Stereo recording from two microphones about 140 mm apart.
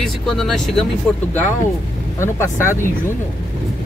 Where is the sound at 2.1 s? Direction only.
20° left (ahead or behind).